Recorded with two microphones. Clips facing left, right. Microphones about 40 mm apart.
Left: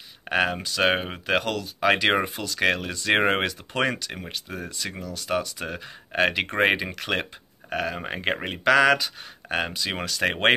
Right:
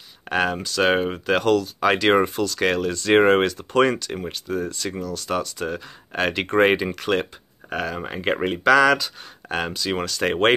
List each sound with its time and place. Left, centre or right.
0.3 s speech: centre
8.0 s speech: centre